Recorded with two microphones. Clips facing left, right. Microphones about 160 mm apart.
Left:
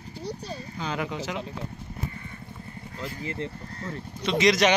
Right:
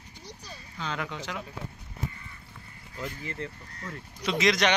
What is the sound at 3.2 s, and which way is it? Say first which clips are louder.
Speech: left 4 dB; 25° left (ahead or behind).